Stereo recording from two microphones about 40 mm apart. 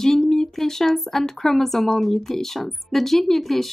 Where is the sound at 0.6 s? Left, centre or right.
Centre.